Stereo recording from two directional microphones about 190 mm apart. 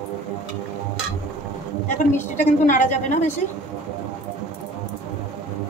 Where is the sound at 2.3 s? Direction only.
40° left (ahead or behind).